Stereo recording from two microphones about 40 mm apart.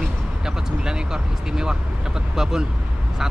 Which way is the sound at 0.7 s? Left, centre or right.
Centre.